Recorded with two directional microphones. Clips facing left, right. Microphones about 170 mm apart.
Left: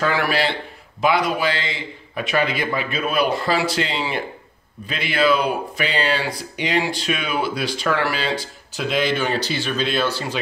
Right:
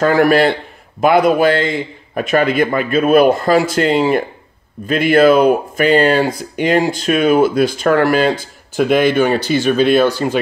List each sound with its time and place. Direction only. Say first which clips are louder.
0.0 s speech: right 9 dB; 45° right (ahead or behind)